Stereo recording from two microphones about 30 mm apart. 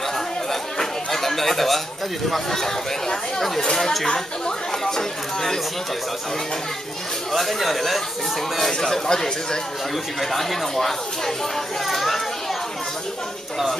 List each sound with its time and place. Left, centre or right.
0.5 s chatter: centre
3.3 s speech: centre
4.8 s chatter: centre
7.3 s speech: centre
8.8 s speech: left
10.3 s speech: centre